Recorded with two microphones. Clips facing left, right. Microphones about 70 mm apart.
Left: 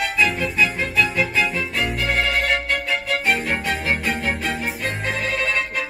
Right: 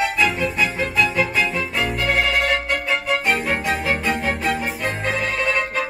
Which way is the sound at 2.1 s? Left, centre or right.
Centre.